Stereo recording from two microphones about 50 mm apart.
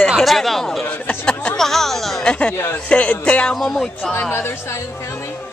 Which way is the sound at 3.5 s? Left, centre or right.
Centre.